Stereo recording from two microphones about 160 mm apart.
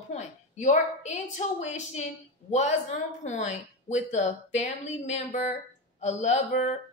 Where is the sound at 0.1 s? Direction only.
45° left (ahead or behind).